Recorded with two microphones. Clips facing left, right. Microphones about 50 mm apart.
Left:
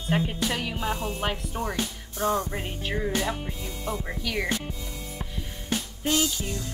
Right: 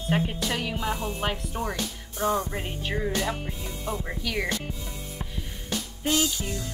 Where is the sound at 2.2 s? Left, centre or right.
Right.